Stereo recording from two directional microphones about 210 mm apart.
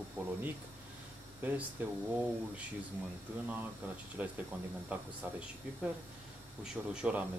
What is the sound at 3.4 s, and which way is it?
Speech, 10° right (ahead or behind).